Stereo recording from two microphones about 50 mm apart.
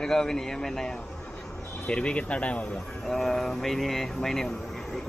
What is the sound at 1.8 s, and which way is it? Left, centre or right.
Speech, left.